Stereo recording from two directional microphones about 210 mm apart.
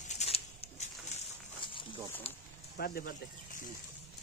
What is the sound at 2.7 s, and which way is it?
Speech, 45° left (ahead or behind).